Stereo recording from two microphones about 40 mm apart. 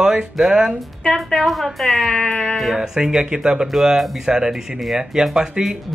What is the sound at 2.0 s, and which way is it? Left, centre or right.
Music, left.